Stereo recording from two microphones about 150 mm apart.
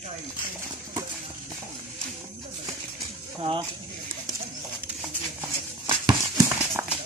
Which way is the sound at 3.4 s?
35° right (ahead or behind).